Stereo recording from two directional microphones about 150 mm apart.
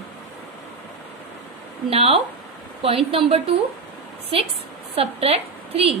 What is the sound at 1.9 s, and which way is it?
A woman's voice, 40° right (ahead or behind).